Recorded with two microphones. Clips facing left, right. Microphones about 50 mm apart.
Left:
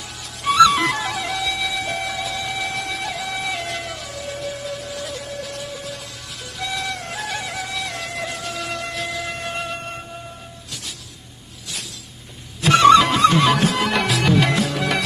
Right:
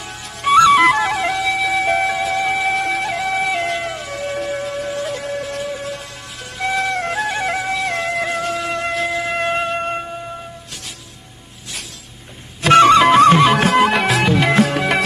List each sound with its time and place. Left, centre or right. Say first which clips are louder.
0.4 s music: right 4 dB; right
12.6 s music: right 3 dB; right
13.1 s music: right 6 dB; right
14.2 s music: right 2 dB; centre
14.5 s music: right 6 dB; right
14.8 s music: right 4 dB; right